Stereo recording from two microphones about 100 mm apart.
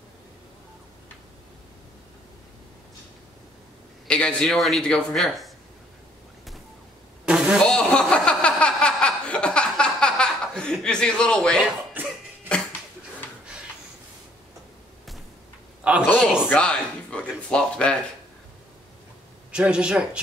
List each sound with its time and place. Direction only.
4.1 s a man's voice: 10° left (ahead or behind)
7.2 s a sound: 5° right (ahead or behind)
7.6 s chuckle: 10° left (ahead or behind)
12.0 s cough: 20° right (ahead or behind)
15.8 s a sound: 10° right (ahead or behind)
16.2 s a man's voice: 5° right (ahead or behind)
16.4 s speech: 10° left (ahead or behind)
19.5 s a woman's voice: 10° right (ahead or behind)